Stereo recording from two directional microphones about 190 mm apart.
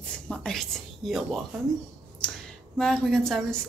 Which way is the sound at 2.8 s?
5° left (ahead or behind).